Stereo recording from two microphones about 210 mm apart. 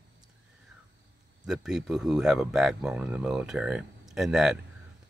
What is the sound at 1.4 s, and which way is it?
Speech, centre (ahead or behind).